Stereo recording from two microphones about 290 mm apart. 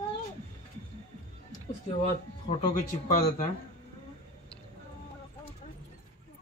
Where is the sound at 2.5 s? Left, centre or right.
Left.